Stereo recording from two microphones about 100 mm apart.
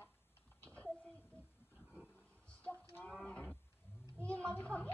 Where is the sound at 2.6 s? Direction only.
15° left (ahead or behind).